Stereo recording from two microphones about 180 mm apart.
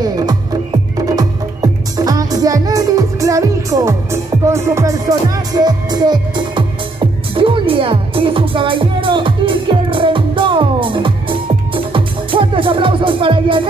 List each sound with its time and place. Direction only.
0.0 s music: 20° right (ahead or behind)